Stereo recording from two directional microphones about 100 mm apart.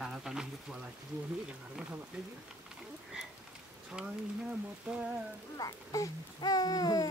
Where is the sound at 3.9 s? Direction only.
10° right (ahead or behind).